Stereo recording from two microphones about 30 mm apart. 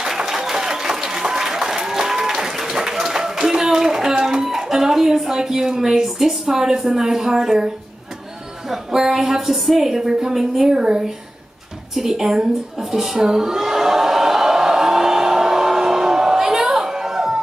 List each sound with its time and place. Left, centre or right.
0.1 s applause: centre
4.2 s a sound: centre
6.0 s a woman's voice: centre
8.9 s a woman's voice: centre
10.7 s a woman's voice: right
13.2 s a sound: centre